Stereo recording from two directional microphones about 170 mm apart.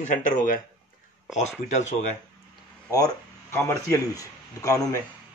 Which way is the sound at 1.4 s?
45° left (ahead or behind).